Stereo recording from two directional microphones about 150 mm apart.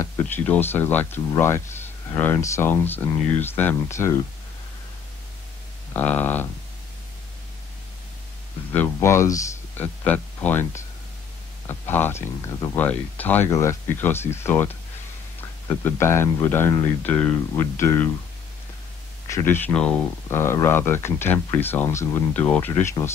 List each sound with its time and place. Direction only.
0.5 s speech: 15° left (ahead or behind)
5.9 s speech: 10° left (ahead or behind)
8.7 s speech: 15° left (ahead or behind)
15.8 s speech: 15° left (ahead or behind)
19.2 s speech: 15° left (ahead or behind)